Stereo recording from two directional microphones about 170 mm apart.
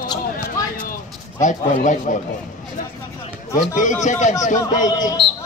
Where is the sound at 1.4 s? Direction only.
45° left (ahead or behind).